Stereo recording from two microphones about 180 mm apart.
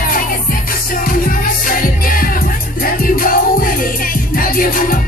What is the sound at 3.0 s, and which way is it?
Music, 50° left (ahead or behind).